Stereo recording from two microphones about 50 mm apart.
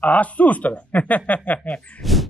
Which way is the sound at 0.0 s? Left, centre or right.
Left.